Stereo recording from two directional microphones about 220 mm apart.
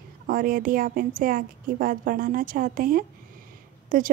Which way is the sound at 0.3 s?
40° right (ahead or behind).